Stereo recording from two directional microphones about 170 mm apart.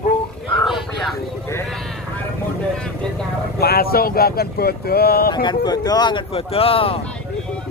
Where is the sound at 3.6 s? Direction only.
65° left (ahead or behind).